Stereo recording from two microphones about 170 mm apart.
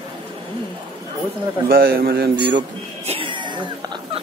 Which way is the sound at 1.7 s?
60° right (ahead or behind).